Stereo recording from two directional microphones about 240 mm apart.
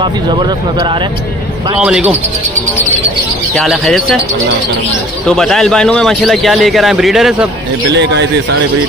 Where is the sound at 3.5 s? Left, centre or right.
Centre.